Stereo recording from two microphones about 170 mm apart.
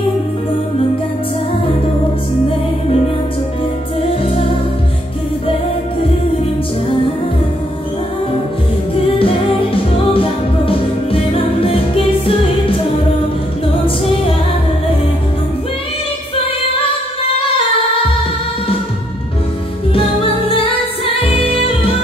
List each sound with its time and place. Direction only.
4.1 s music: 35° left (ahead or behind)
9.2 s music: 30° left (ahead or behind)
13.8 s music: 30° left (ahead or behind)
19.9 s music: 35° left (ahead or behind)